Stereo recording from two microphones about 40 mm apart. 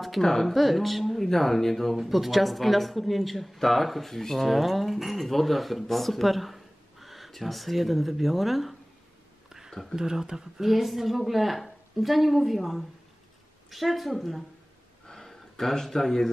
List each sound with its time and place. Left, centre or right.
0.0 s speech: centre
2.0 s speech: centre
9.9 s speech: centre
15.0 s a sound: centre